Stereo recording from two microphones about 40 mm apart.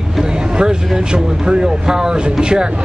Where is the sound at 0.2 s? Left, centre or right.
Centre.